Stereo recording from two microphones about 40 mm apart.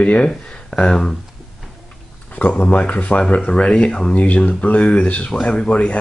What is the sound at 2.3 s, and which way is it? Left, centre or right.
Speech, left.